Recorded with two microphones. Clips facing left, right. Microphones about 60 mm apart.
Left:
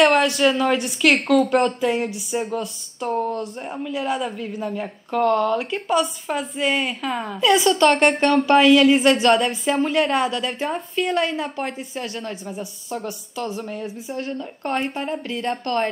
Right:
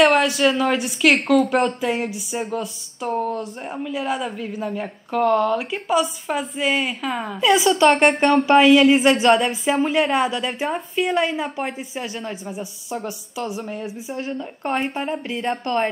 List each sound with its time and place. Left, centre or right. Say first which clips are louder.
0.0 s a woman's voice: even; centre
15.5 s speech: right 1 dB; centre